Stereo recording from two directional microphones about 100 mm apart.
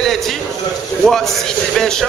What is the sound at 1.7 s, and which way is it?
Speech, 5° left (ahead or behind).